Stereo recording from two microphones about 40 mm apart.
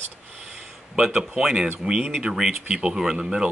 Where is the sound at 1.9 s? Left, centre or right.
Centre.